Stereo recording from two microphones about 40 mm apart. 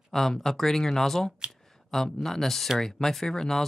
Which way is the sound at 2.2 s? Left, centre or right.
Centre.